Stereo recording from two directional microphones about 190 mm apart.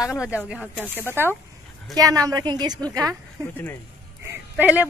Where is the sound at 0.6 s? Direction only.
10° left (ahead or behind).